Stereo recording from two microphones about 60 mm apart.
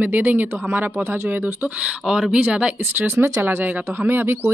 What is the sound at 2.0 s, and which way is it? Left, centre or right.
Speech, centre.